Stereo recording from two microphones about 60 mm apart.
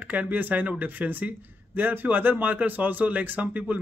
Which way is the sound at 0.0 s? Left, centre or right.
Right.